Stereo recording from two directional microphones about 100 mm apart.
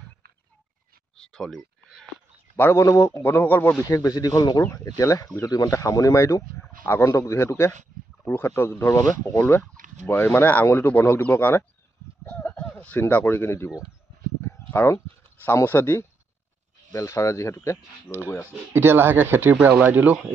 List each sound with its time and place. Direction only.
1.1 s speech: 5° left (ahead or behind)
2.5 s a man's voice: 25° left (ahead or behind)
3.8 s a man's voice: 35° left (ahead or behind)
12.3 s a sound: 15° left (ahead or behind)
13.1 s a man's voice: 20° left (ahead or behind)
18.7 s speech: 20° right (ahead or behind)